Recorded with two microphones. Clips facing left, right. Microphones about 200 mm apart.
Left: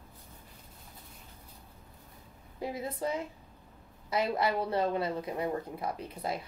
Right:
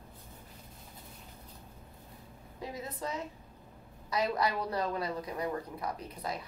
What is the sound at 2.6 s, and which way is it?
A woman's voice, 30° left (ahead or behind).